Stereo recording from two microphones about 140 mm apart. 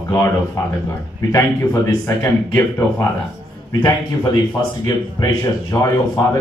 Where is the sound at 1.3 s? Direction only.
20° left (ahead or behind).